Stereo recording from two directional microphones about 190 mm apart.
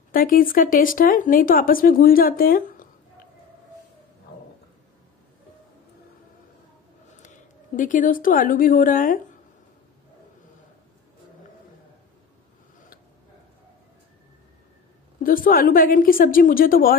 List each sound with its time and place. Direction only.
0.1 s speech: 50° left (ahead or behind)
7.2 s speech: 40° left (ahead or behind)
15.2 s speech: 45° left (ahead or behind)